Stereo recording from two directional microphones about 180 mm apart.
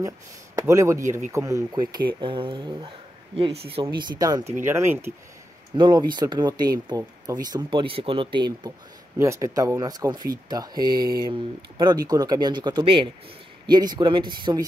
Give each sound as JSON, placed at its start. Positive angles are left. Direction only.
{"t": 0.6, "sound": "speech", "side_deg": -15}
{"t": 5.8, "sound": "speech", "side_deg": -25}